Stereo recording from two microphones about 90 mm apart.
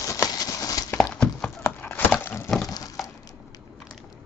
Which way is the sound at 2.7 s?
45° left (ahead or behind).